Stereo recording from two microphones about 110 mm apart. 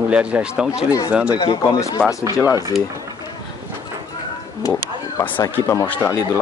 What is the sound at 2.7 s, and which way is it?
Speech, centre (ahead or behind).